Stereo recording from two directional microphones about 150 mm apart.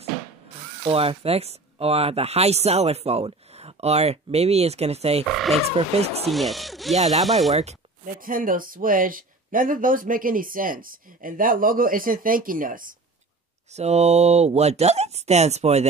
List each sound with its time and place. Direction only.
0.8 s speech: 40° right (ahead or behind)
5.3 s speech: centre (ahead or behind)
5.6 s speech: 45° right (ahead or behind)
6.3 s speech: centre (ahead or behind)
7.5 s a sound: 50° right (ahead or behind)
8.1 s speech: 70° right (ahead or behind)
13.7 s speech: 45° right (ahead or behind)